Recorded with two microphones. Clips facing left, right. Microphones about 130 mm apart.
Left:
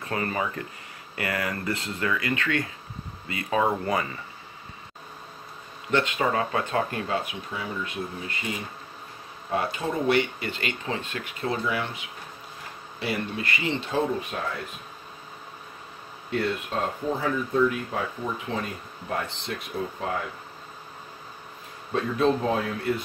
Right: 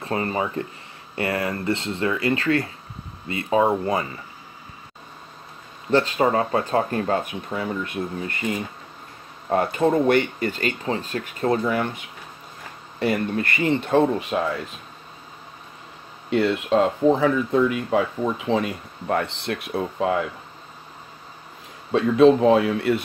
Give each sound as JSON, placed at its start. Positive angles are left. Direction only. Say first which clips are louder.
{"t": 0.0, "sound": "speech", "louder": "right 4 dB", "side_deg": -30}
{"t": 5.9, "sound": "speech", "louder": "right 5 dB", "side_deg": -35}
{"t": 9.5, "sound": "speech", "louder": "right 8 dB", "side_deg": -50}
{"t": 13.0, "sound": "speech", "louder": "right 7 dB", "side_deg": -50}
{"t": 16.3, "sound": "speech", "louder": "right 8 dB", "side_deg": -90}
{"t": 21.9, "sound": "speech", "louder": "right 9 dB", "side_deg": -90}